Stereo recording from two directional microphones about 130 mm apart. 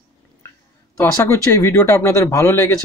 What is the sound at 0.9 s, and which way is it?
A man's voice, 20° left (ahead or behind).